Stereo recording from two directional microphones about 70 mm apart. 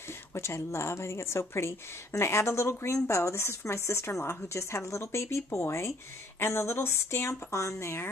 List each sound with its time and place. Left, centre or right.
0.3 s a woman's voice: left